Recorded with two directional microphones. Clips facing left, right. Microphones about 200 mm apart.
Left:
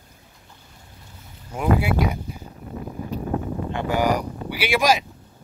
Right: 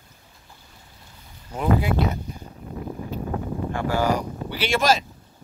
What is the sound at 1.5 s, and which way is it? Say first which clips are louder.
Speech: left 1 dB; 10° left (ahead or behind).